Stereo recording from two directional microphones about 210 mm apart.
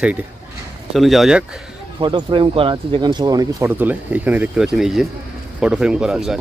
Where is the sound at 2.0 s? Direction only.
20° right (ahead or behind); by 6.3 s 5° right (ahead or behind).